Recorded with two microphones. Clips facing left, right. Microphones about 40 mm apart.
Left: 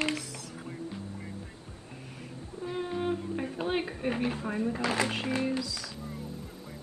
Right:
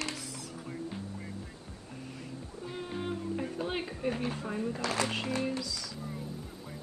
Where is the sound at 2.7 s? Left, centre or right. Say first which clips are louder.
Left 6 dB; centre.